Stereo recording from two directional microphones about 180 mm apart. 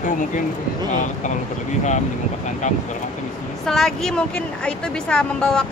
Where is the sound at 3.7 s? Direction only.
5° left (ahead or behind).